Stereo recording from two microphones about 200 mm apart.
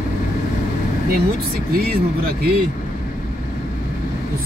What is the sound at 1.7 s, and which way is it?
Speech, 50° right (ahead or behind).